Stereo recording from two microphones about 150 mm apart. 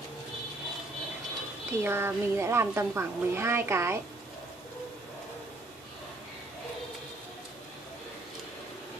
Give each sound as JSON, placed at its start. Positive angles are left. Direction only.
{"t": 1.7, "sound": "a woman's voice", "side_deg": -15}